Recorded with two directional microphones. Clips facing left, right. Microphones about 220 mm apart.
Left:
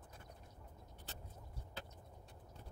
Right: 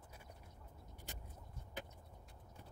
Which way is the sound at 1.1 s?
15° right (ahead or behind).